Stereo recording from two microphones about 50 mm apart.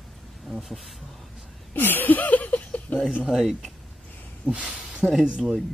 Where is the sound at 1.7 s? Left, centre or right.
Left.